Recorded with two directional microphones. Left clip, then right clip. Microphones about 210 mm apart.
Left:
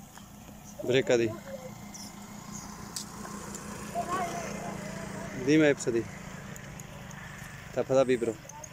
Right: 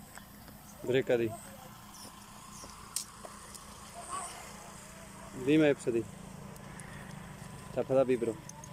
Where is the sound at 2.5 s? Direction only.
40° left (ahead or behind).